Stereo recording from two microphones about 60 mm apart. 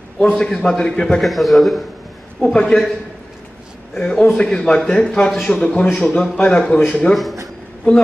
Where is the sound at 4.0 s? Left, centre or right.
Centre.